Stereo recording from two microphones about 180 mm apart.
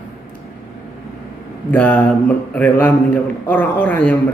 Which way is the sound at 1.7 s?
10° left (ahead or behind).